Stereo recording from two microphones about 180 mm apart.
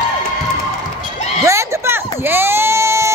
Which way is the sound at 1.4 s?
15° right (ahead or behind).